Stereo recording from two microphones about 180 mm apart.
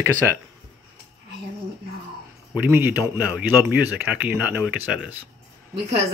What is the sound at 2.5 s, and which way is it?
Speech, 10° right (ahead or behind).